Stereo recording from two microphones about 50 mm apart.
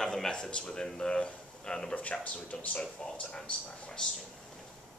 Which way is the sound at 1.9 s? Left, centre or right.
Left.